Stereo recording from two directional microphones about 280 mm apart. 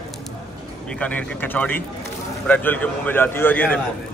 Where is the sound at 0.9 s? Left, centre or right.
Centre.